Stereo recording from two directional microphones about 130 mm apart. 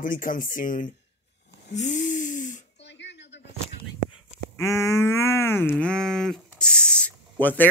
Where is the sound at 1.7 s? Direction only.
70° left (ahead or behind).